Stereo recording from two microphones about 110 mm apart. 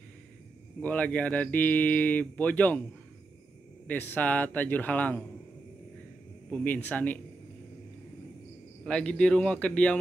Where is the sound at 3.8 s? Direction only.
15° left (ahead or behind).